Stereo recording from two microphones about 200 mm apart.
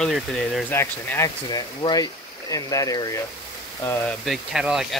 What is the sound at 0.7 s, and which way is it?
Speech, 10° left (ahead or behind).